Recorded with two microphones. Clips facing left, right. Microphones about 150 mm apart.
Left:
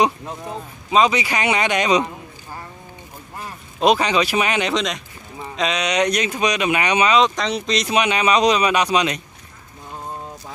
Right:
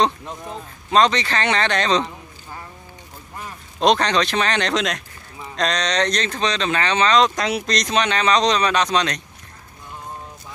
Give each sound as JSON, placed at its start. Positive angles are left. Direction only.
{"t": 0.0, "sound": "speech", "side_deg": 10}
{"t": 3.8, "sound": "speech", "side_deg": 5}
{"t": 7.2, "sound": "speech", "side_deg": 0}